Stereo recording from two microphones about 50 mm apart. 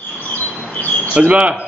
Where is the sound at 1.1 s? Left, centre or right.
Right.